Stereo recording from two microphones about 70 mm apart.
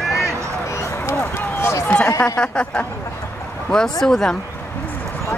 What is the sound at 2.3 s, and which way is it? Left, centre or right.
Speech, centre.